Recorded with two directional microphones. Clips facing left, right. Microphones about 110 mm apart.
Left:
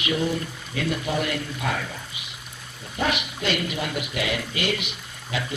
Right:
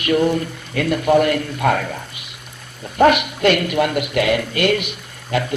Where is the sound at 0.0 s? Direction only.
55° right (ahead or behind).